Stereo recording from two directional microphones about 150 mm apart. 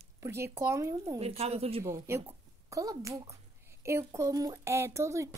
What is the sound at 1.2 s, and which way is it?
Speech, 40° right (ahead or behind).